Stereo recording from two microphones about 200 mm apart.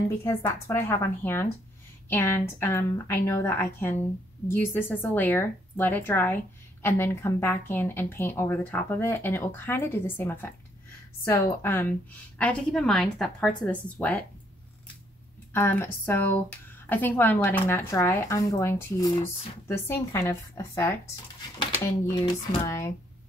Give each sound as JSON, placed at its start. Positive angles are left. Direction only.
{"t": 0.2, "sound": "a woman's voice", "side_deg": 15}
{"t": 15.5, "sound": "speech", "side_deg": 10}